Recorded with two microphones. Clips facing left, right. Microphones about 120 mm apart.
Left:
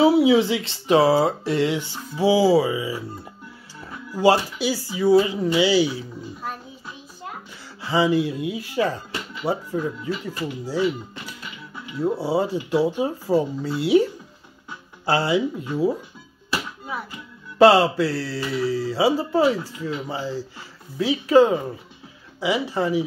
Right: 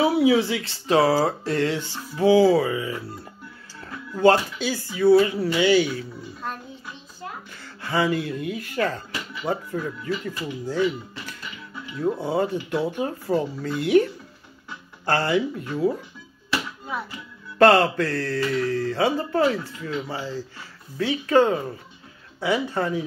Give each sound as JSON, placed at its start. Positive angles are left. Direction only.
{"t": 0.0, "sound": "speech", "side_deg": 20}
{"t": 4.1, "sound": "speech", "side_deg": 10}
{"t": 7.8, "sound": "speech", "side_deg": 15}
{"t": 15.0, "sound": "speech", "side_deg": 15}
{"t": 17.6, "sound": "speech", "side_deg": 10}